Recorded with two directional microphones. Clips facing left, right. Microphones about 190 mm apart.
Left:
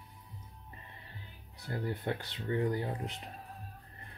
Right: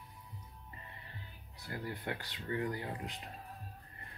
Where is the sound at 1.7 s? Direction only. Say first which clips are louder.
Left 5 dB; 25° left (ahead or behind).